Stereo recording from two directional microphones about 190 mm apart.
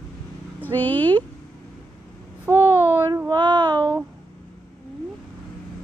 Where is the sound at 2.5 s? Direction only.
10° right (ahead or behind).